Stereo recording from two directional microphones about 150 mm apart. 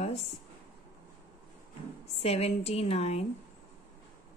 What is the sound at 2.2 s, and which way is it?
A woman's voice, 45° left (ahead or behind).